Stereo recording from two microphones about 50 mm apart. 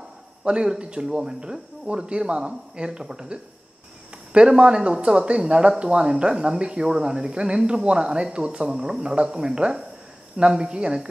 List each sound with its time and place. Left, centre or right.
0.4 s speech: centre